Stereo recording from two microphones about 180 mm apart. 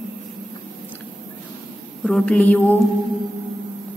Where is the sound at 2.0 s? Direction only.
5° left (ahead or behind).